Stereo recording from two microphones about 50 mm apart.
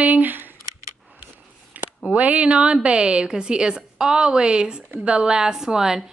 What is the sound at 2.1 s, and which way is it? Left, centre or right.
A woman's voice, right.